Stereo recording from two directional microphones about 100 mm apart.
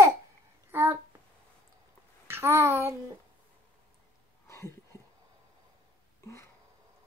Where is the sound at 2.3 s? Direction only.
25° right (ahead or behind).